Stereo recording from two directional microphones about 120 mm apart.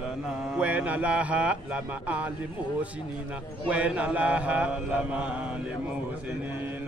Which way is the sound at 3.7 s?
10° right (ahead or behind).